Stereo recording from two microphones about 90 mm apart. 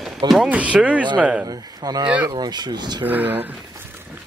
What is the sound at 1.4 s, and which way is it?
Speech, 45° right (ahead or behind).